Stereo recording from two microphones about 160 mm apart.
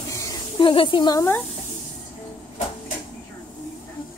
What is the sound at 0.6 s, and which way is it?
Speech, 35° left (ahead or behind).